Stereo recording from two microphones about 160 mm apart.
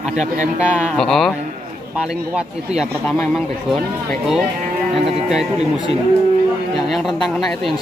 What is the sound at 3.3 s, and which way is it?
Speech, centre (ahead or behind).